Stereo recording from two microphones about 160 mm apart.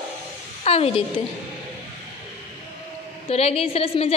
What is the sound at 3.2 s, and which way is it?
Speech, 40° left (ahead or behind).